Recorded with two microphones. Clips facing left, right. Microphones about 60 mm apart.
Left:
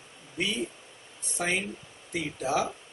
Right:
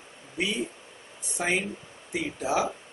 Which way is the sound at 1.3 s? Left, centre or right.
Centre.